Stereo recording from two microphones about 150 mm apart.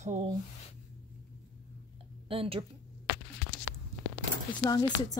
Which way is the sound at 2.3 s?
40° right (ahead or behind).